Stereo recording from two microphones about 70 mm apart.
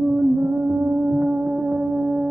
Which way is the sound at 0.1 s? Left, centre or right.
Right.